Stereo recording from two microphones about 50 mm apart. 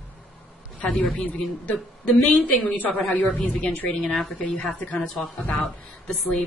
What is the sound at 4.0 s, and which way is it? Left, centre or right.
Speech, centre.